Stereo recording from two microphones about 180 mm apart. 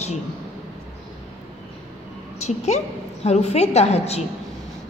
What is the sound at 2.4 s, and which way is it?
A woman's voice, 40° left (ahead or behind).